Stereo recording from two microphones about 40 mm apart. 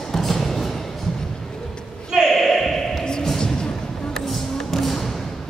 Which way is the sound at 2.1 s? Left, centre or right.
Centre.